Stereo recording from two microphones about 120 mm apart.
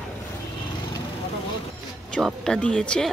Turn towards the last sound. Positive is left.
turn(degrees=5)  # may be behind; listen again after turning